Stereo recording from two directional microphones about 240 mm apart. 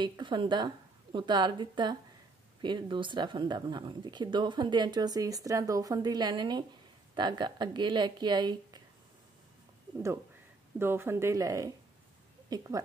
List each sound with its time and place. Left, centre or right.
0.0 s a woman's voice: centre
10.8 s speech: centre